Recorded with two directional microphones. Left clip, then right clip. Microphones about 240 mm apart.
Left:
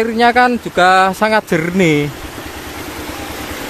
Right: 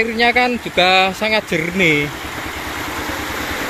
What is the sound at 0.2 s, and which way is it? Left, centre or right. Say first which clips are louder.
Speech: left 5 dB; left.